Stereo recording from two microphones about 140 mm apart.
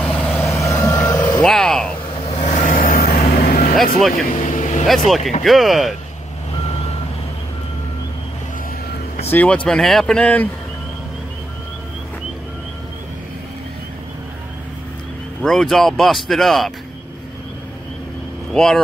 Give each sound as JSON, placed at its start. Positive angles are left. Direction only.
{"t": 0.0, "sound": "vehicle", "side_deg": 10}
{"t": 1.4, "sound": "vehicle", "side_deg": 5}
{"t": 2.2, "sound": "vehicle", "side_deg": 50}
{"t": 4.1, "sound": "vehicle", "side_deg": 65}
{"t": 4.8, "sound": "speech", "side_deg": 0}
{"t": 9.3, "sound": "speech", "side_deg": 10}
{"t": 15.4, "sound": "speech", "side_deg": 0}
{"t": 18.5, "sound": "speech", "side_deg": 5}